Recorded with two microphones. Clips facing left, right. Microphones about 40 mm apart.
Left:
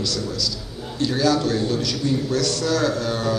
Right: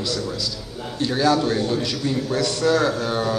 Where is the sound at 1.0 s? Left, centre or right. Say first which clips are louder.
Right 1 dB; centre.